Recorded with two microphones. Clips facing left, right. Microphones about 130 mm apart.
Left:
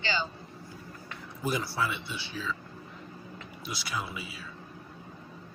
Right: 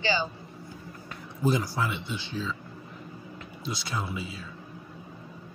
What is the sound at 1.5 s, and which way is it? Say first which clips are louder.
Speech: right 4 dB; 20° right (ahead or behind).